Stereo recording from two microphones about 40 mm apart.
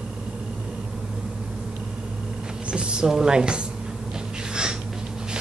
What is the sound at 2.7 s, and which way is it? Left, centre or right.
Speech, right.